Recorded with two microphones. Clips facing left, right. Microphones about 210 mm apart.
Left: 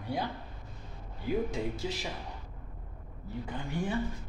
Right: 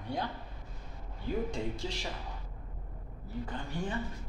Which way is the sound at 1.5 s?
5° left (ahead or behind).